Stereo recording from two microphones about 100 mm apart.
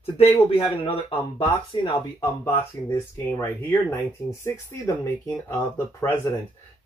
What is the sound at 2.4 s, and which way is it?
Speech, 25° left (ahead or behind).